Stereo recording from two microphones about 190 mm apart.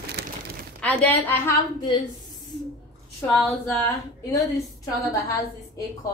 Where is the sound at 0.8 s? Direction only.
5° left (ahead or behind).